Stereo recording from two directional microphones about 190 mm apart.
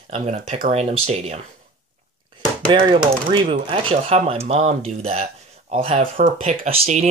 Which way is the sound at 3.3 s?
25° right (ahead or behind).